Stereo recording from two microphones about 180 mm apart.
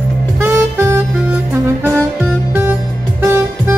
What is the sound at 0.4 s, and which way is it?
Saxophone, 15° right (ahead or behind).